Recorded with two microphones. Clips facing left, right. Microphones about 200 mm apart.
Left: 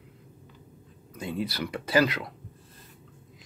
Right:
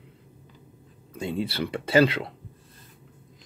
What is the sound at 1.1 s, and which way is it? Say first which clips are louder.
Speech: right 3 dB; 25° right (ahead or behind).